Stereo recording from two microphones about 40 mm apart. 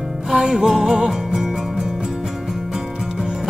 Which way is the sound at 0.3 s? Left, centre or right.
Centre.